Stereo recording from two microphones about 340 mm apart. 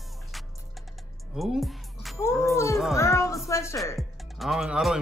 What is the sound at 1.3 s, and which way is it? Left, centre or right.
A man's voice, centre.